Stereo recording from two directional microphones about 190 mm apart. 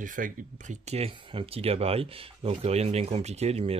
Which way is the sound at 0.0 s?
45° right (ahead or behind).